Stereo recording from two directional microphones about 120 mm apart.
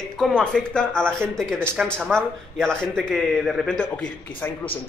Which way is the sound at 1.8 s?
5° left (ahead or behind).